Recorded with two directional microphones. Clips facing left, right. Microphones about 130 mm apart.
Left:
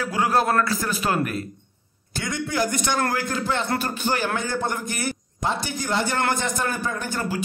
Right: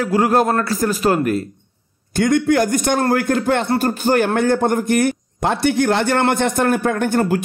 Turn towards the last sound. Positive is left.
turn(degrees=-60)  # may be behind; listen again after turning